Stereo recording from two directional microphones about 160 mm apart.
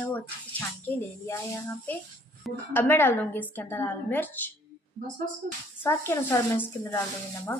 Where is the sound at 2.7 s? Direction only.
10° left (ahead or behind).